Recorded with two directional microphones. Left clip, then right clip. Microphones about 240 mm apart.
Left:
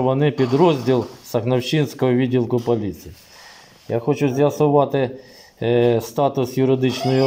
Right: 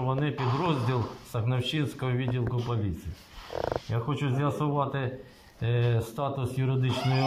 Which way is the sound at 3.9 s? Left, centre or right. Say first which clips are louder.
Left 13 dB; left.